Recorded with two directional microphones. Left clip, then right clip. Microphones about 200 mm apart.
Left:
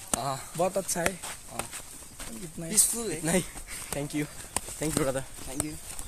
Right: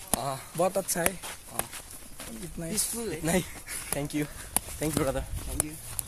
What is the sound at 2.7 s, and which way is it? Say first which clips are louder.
Speech: left 5 dB; 40° left (ahead or behind).